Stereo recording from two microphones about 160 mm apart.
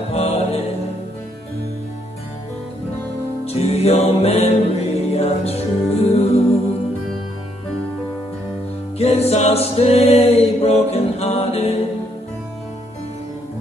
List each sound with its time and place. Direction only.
0.1 s music: 40° left (ahead or behind)
3.4 s music: 40° left (ahead or behind)
8.9 s music: 40° left (ahead or behind)